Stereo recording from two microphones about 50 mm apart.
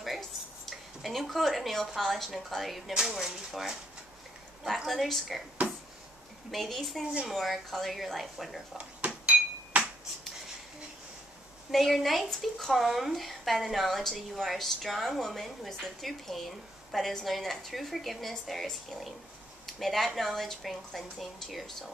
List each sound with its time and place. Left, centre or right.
0.7 s a woman's voice: centre
4.8 s a woman's voice: centre
6.5 s a woman's voice: centre
8.7 s a sound: right
11.7 s a woman's voice: centre